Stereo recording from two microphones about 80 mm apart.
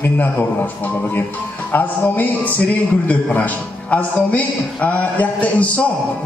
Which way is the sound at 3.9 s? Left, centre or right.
Centre.